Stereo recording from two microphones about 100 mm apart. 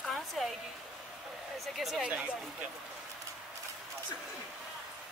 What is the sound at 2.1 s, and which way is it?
Speech, 10° right (ahead or behind).